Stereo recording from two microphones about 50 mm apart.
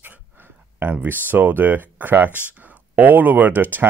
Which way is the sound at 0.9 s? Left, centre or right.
Right.